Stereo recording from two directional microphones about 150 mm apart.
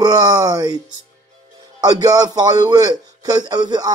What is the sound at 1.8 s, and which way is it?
Music, 25° right (ahead or behind).